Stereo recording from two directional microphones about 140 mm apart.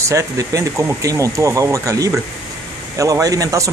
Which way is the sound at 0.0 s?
20° right (ahead or behind).